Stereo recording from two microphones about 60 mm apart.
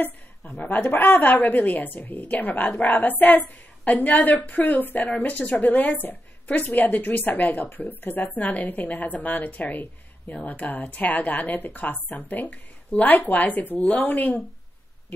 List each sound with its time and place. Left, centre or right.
0.7 s a woman's voice: left